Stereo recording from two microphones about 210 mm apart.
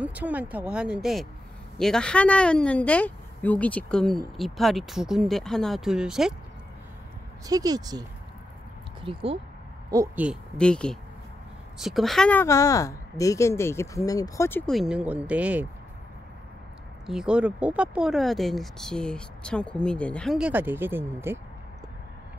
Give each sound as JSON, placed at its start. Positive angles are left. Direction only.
{"t": 0.0, "sound": "speech", "side_deg": -5}
{"t": 7.4, "sound": "speech", "side_deg": -20}
{"t": 9.0, "sound": "speech", "side_deg": -25}
{"t": 10.2, "sound": "a woman's voice", "side_deg": 0}
{"t": 17.0, "sound": "speech", "side_deg": -5}